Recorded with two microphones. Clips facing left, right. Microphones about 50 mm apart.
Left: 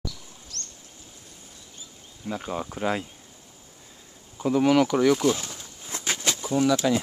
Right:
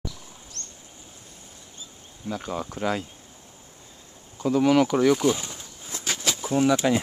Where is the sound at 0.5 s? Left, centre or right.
Centre.